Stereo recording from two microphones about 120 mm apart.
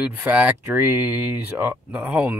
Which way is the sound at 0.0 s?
10° right (ahead or behind).